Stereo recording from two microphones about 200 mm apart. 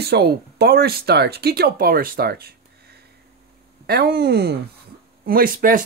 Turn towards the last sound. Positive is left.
turn(degrees=-45)  # may be behind; listen again after turning